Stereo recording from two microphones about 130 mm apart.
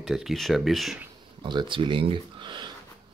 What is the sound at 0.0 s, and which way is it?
Speech, centre (ahead or behind).